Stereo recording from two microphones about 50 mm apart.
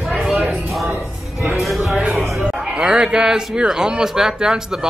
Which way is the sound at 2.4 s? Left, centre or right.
Centre.